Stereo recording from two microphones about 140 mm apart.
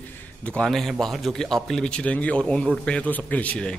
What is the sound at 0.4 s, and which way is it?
A man's voice, 5° left (ahead or behind).